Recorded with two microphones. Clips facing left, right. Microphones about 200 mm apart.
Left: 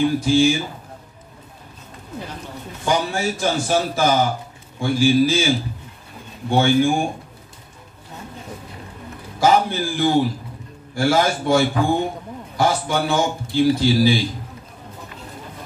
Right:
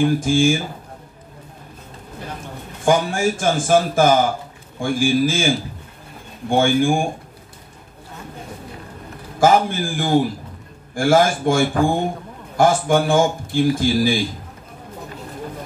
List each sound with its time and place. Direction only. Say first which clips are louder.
0.0 s a man's voice: even; 50° right (ahead or behind)
2.8 s a man's voice: right 4 dB; 50° right (ahead or behind)
6.5 s a man's voice: even; 50° right (ahead or behind)
9.4 s a man's voice: right 1 dB; 50° right (ahead or behind)